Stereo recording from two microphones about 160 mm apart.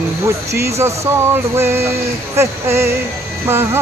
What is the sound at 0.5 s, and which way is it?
Speech, 15° right (ahead or behind).